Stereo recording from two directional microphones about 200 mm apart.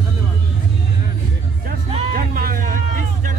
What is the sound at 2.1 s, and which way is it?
Music, 45° right (ahead or behind).